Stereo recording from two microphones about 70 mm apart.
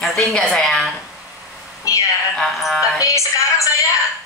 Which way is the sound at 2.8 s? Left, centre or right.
Left.